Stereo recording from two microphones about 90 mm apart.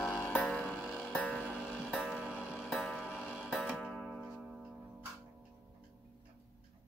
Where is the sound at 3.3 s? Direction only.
5° right (ahead or behind).